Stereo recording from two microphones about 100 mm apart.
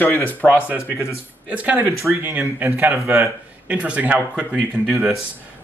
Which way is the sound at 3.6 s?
15° right (ahead or behind).